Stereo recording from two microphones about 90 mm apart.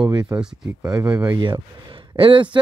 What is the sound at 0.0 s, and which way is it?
Speech, 55° right (ahead or behind).